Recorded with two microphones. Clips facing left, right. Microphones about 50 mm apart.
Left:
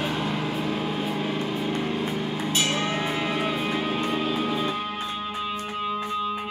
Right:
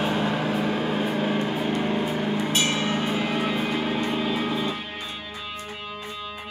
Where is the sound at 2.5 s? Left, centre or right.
Right.